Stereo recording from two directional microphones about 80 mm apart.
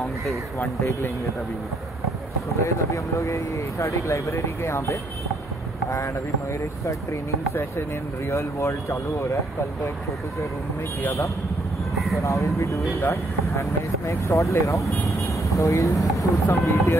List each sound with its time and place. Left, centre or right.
2.6 s speech: left
6.9 s speech: left
11.0 s speech: left